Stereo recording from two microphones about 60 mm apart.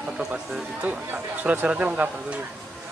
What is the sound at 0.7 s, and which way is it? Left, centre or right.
Speech, right.